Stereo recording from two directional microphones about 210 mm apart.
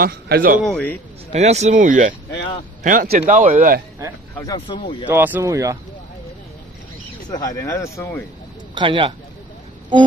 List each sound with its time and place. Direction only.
0.0 s speech: 45° right (ahead or behind)
0.6 s speech: 5° left (ahead or behind)
1.3 s a man's voice: 30° right (ahead or behind)
4.5 s speech: 20° left (ahead or behind)
5.0 s speech: 10° right (ahead or behind)
7.2 s speech: 15° left (ahead or behind)
8.7 s speech: 25° right (ahead or behind)